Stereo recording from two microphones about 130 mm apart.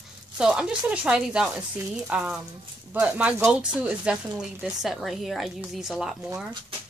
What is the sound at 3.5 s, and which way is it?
Speech, 5° right (ahead or behind).